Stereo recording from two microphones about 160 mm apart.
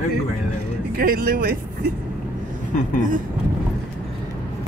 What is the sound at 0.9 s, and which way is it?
Speech, 65° right (ahead or behind).